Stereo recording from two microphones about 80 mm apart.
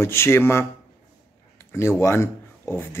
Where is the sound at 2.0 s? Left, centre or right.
Left.